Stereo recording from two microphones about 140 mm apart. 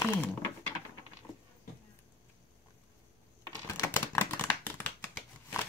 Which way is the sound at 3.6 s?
20° left (ahead or behind).